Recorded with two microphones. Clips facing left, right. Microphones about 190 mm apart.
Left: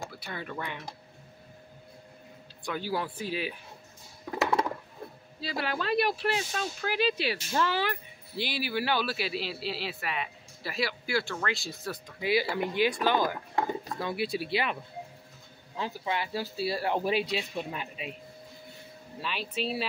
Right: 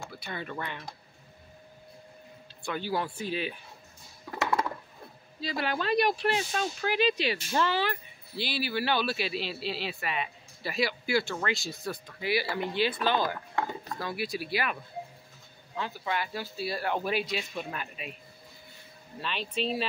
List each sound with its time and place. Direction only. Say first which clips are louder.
0.2 s speech: right 2 dB; 5° left (ahead or behind)
2.7 s speech: right 1 dB; 5° left (ahead or behind)
5.4 s speech: right 1 dB; 5° left (ahead or behind)
12.2 s speech: left 3 dB; 20° left (ahead or behind)
15.8 s speech: left 1 dB; 30° left (ahead or behind)
19.1 s speech: right 1 dB; 5° left (ahead or behind)